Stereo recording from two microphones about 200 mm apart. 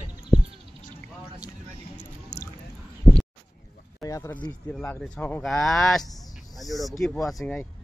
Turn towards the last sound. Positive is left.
turn(degrees=5)  # may be behind; listen again after turning